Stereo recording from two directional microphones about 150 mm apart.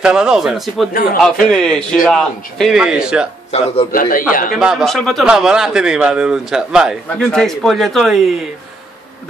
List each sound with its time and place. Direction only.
0.0 s a man's voice: 5° right (ahead or behind)
3.5 s a man's voice: 40° left (ahead or behind)
3.9 s a man's voice: 65° left (ahead or behind)
4.6 s a man's voice: 5° right (ahead or behind)